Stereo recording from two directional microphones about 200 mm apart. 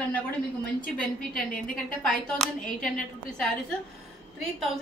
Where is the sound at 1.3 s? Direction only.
45° left (ahead or behind).